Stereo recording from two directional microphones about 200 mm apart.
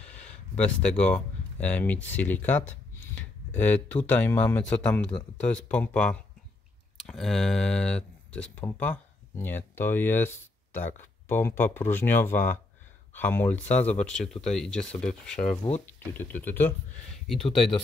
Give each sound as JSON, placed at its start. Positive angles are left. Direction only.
{"t": 0.0, "sound": "a sound", "side_deg": 5}
{"t": 0.8, "sound": "speech", "side_deg": 5}
{"t": 17.6, "sound": "speech", "side_deg": 25}